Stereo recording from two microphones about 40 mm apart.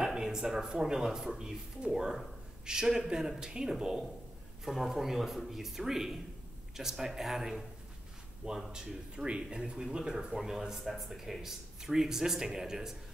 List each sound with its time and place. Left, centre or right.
0.0 s speech: centre
8.7 s speech: right